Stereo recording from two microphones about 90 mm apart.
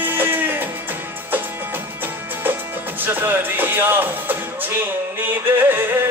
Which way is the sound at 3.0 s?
20° right (ahead or behind).